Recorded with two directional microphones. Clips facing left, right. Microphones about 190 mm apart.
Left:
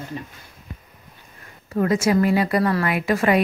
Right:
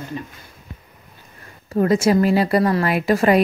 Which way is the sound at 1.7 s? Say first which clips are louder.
Right 3 dB; 30° right (ahead or behind).